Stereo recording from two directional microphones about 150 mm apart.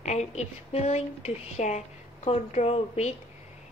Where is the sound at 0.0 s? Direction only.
50° left (ahead or behind).